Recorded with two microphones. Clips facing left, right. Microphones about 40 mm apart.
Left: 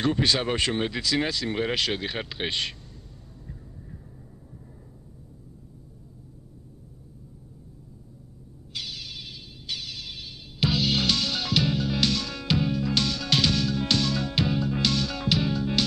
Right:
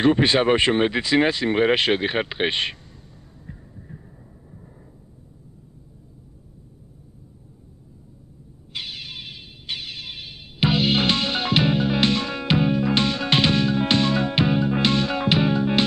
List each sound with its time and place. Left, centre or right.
0.0 s speech: right
3.5 s heart sounds: right
8.7 s music: right